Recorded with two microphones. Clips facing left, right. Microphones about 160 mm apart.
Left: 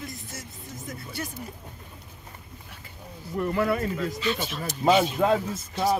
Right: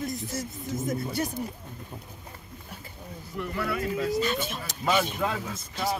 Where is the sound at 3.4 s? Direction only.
45° left (ahead or behind).